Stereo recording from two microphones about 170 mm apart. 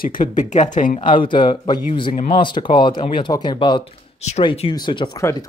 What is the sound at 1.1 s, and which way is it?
Speech, 30° left (ahead or behind).